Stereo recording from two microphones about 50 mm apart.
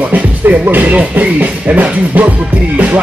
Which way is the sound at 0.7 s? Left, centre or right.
Right.